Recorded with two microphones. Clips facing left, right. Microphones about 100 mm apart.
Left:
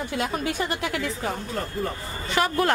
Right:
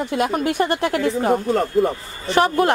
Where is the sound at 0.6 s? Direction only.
45° right (ahead or behind).